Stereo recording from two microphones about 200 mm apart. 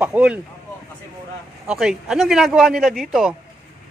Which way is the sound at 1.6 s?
5° right (ahead or behind).